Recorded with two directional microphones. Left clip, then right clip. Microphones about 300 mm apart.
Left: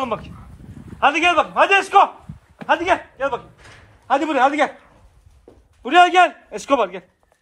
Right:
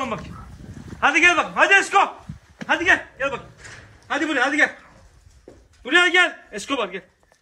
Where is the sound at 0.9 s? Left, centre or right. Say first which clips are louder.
Left 1 dB; centre.